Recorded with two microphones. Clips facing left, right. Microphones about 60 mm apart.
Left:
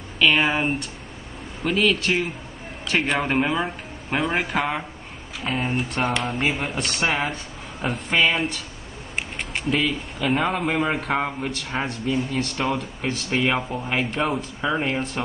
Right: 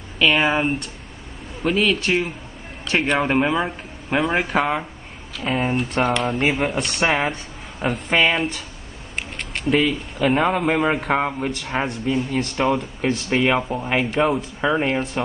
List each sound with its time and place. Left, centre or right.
0.2 s speech: centre
9.1 s a sound: centre
9.7 s speech: centre